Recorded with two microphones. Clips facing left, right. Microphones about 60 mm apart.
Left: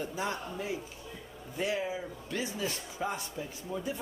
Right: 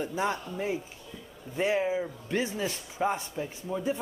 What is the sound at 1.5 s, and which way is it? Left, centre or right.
Speech, right.